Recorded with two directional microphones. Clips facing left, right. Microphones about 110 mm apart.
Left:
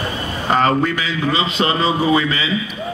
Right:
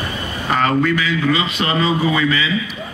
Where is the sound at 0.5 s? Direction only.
35° left (ahead or behind).